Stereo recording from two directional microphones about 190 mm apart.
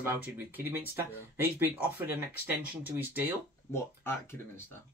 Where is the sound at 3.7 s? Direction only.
10° left (ahead or behind).